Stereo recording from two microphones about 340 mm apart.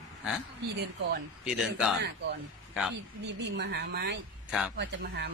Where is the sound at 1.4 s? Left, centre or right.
Centre.